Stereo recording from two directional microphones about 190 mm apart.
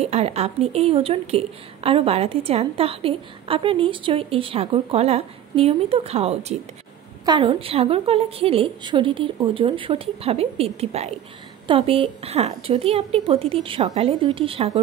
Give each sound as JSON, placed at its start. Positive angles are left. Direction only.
{"t": 0.0, "sound": "a woman's voice", "side_deg": -35}